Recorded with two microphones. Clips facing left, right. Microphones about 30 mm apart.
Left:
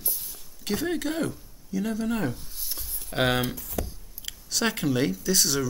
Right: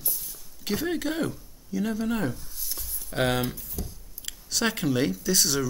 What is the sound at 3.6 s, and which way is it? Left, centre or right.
Speech, left.